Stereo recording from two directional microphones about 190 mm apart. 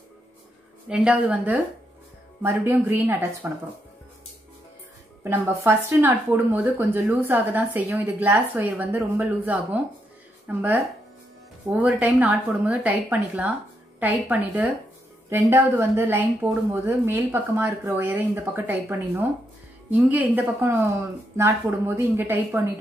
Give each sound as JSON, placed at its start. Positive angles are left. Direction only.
{"t": 0.8, "sound": "speech", "side_deg": -5}
{"t": 5.2, "sound": "speech", "side_deg": -10}